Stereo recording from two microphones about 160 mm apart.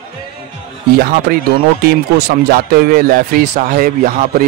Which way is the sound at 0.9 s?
65° right (ahead or behind).